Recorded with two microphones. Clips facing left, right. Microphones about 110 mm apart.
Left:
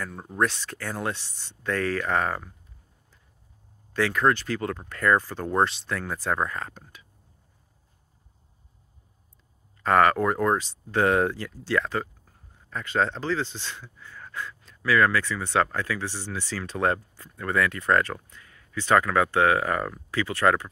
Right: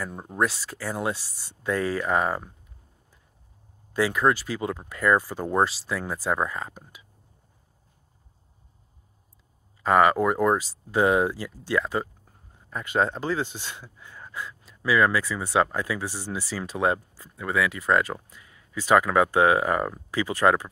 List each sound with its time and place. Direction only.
0.0 s speech: 15° right (ahead or behind)
3.9 s speech: 10° right (ahead or behind)
9.8 s speech: 10° right (ahead or behind)